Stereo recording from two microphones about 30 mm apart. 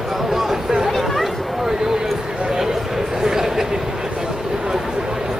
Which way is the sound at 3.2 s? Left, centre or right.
Centre.